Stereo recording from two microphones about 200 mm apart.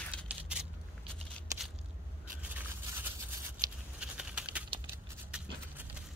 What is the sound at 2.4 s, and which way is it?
Scrape, 10° right (ahead or behind).